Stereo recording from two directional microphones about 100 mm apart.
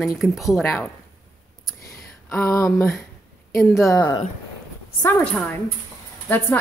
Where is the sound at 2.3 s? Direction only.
30° left (ahead or behind).